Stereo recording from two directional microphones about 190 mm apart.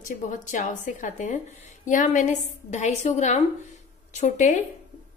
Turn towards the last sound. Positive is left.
turn(degrees=40)  # may be behind; listen again after turning